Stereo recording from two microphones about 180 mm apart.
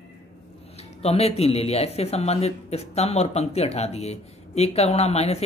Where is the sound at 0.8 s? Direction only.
35° left (ahead or behind).